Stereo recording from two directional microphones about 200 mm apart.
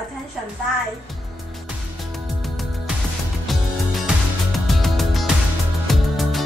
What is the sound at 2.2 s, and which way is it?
Music, centre (ahead or behind).